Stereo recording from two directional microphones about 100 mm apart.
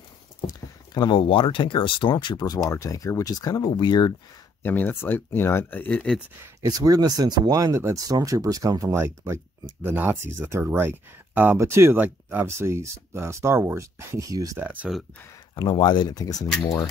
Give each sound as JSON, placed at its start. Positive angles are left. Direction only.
{"t": 0.5, "sound": "speech", "side_deg": 45}
{"t": 3.7, "sound": "speech", "side_deg": 50}
{"t": 4.6, "sound": "speech", "side_deg": 20}
{"t": 6.7, "sound": "speech", "side_deg": -40}
{"t": 14.6, "sound": "speech", "side_deg": -15}
{"t": 15.5, "sound": "speech", "side_deg": 45}